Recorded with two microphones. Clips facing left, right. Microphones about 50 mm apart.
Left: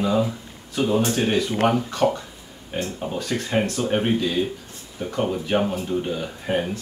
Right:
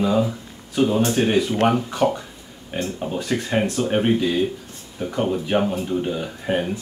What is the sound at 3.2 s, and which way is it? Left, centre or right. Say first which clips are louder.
Speech: right 2 dB; centre.